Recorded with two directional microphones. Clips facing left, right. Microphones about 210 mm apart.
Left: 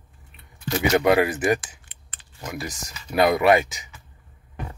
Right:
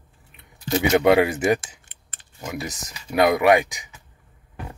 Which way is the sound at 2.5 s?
20° right (ahead or behind).